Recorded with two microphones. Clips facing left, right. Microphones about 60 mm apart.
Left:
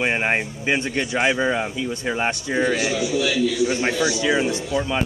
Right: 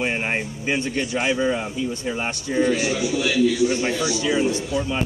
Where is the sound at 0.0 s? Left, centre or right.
Left.